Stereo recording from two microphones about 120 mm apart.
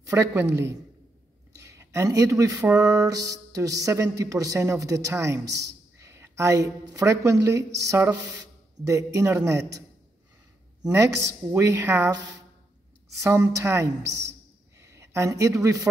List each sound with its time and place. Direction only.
0.0 s music: 25° right (ahead or behind)
1.6 s speech: 25° right (ahead or behind)
2.8 s music: 30° right (ahead or behind)
10.9 s music: 25° right (ahead or behind)
13.2 s music: 25° right (ahead or behind)
14.8 s speech: 25° right (ahead or behind)